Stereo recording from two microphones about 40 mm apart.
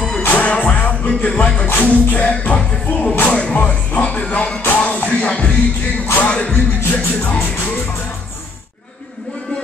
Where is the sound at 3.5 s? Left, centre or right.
Left.